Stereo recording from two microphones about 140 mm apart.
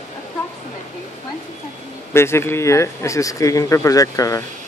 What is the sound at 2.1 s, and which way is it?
Speech, 20° left (ahead or behind).